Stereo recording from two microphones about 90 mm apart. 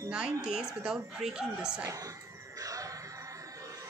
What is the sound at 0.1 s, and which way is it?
A woman's voice, 10° right (ahead or behind).